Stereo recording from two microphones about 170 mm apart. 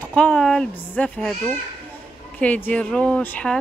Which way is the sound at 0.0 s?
5° left (ahead or behind).